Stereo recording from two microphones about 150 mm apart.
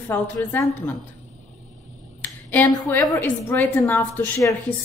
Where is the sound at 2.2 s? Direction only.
10° left (ahead or behind).